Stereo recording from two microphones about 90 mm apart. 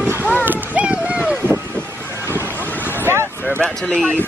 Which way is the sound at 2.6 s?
20° left (ahead or behind).